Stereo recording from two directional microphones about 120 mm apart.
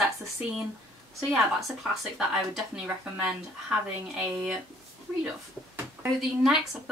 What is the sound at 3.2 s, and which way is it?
Speech, 10° right (ahead or behind).